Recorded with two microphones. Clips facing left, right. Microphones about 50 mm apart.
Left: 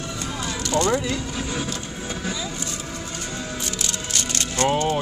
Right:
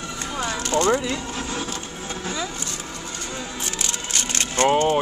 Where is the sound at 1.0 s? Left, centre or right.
Centre.